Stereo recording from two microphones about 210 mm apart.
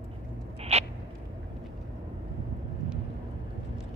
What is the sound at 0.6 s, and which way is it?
Owl, 30° right (ahead or behind).